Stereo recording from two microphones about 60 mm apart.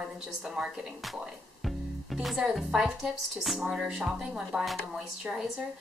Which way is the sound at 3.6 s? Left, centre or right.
Centre.